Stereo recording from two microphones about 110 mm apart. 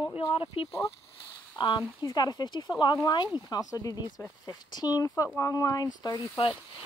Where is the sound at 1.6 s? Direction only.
45° left (ahead or behind).